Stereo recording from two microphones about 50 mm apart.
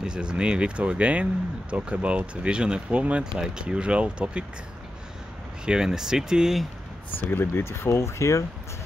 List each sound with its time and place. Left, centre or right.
0.0 s speech: centre
5.7 s speech: centre
7.2 s speech: left
7.6 s speech: left